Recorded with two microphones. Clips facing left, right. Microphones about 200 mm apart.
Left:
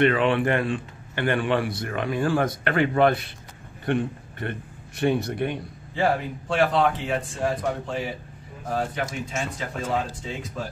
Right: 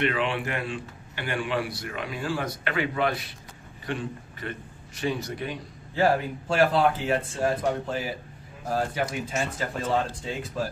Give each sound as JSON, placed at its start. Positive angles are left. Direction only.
{"t": 0.0, "sound": "a man's voice", "side_deg": 55}
{"t": 5.9, "sound": "speech", "side_deg": 0}